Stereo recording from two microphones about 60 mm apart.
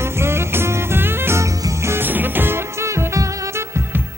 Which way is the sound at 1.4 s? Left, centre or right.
Right.